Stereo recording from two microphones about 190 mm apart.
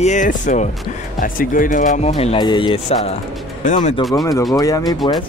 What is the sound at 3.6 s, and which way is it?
Speech, 40° left (ahead or behind).